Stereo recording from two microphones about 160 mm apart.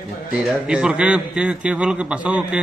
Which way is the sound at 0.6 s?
5° right (ahead or behind).